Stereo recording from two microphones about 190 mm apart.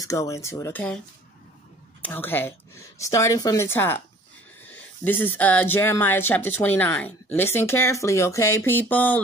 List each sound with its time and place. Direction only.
0.0 s speech: 15° left (ahead or behind)
2.0 s speech: 10° left (ahead or behind)